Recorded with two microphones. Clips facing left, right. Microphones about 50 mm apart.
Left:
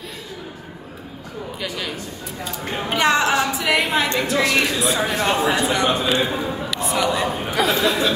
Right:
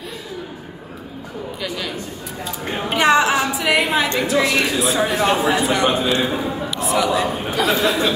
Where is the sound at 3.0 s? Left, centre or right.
Centre.